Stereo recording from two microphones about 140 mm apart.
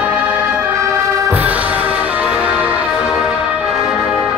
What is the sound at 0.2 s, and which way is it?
Music, 15° right (ahead or behind).